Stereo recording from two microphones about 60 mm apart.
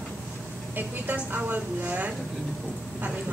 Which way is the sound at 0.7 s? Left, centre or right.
Right.